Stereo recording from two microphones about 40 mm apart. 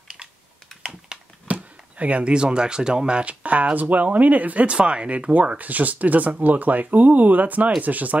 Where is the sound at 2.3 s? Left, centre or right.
Right.